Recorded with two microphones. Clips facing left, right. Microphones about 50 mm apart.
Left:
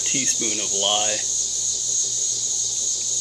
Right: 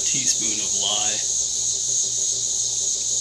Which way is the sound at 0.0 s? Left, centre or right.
Left.